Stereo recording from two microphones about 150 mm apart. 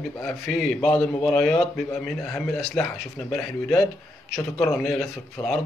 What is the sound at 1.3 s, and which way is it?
Speech, 20° left (ahead or behind).